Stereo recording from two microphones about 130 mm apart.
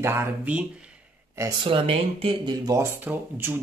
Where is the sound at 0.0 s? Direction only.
20° right (ahead or behind).